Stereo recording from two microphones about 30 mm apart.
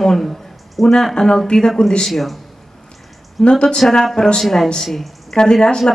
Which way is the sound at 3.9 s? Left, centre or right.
Centre.